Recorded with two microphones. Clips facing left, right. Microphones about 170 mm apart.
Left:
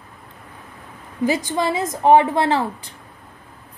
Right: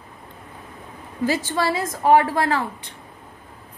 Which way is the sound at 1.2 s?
15° left (ahead or behind).